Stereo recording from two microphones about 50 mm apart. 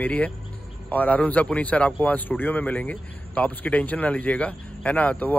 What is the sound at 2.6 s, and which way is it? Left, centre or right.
A man's voice, left.